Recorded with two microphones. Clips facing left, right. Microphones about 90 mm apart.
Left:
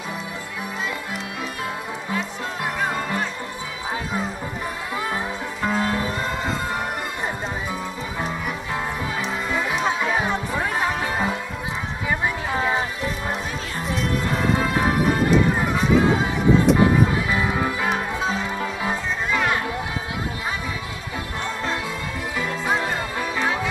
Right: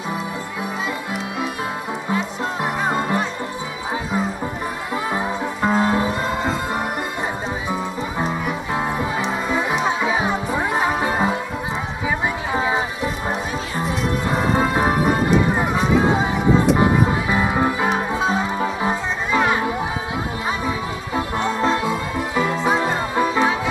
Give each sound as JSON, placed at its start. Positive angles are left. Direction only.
{"t": 2.6, "sound": "music", "side_deg": -25}
{"t": 5.1, "sound": "music", "side_deg": -20}
{"t": 8.7, "sound": "music", "side_deg": -15}
{"t": 12.5, "sound": "music", "side_deg": -5}
{"t": 14.3, "sound": "music", "side_deg": -35}
{"t": 15.6, "sound": "music", "side_deg": -5}
{"t": 16.7, "sound": "music", "side_deg": -20}
{"t": 21.5, "sound": "music", "side_deg": -25}